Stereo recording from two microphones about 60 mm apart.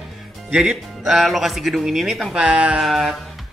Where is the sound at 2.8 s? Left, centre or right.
Centre.